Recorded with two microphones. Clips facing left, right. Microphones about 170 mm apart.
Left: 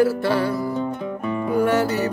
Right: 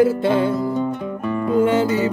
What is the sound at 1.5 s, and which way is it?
Music, 20° right (ahead or behind).